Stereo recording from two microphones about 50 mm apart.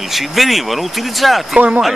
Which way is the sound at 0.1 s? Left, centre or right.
Centre.